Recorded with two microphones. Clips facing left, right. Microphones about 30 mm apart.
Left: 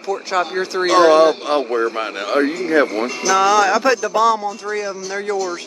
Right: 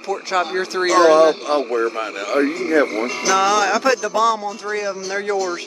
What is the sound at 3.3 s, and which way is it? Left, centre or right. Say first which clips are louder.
Speech: left 2 dB; centre.